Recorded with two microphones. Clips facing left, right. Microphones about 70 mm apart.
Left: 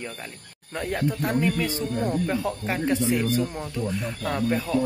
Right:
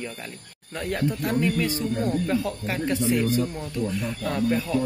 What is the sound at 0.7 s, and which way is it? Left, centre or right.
Speech, left.